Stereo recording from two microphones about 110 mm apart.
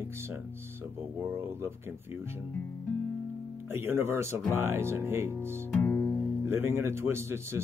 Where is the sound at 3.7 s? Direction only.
20° right (ahead or behind).